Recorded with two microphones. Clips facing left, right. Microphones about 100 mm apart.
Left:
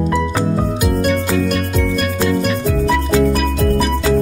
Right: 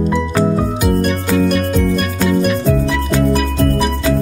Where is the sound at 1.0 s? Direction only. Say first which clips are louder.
Even; centre (ahead or behind).